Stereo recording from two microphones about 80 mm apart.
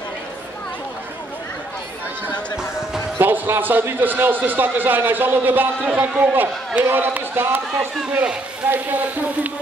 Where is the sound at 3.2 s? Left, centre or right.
Right.